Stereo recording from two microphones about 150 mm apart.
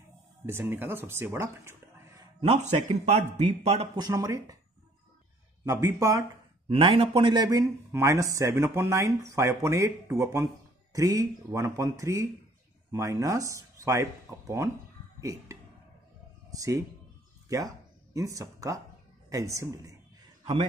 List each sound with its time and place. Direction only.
0.5 s speech: 15° right (ahead or behind)
2.4 s a man's voice: 45° right (ahead or behind)
3.9 s speech: 25° right (ahead or behind)
5.7 s speech: 20° right (ahead or behind)
6.7 s speech: 35° right (ahead or behind); by 14.0 s 20° right (ahead or behind)
15.1 s a woman's voice: 20° right (ahead or behind)